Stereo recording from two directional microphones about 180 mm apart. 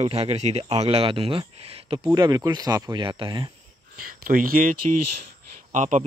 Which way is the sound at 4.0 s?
50° right (ahead or behind).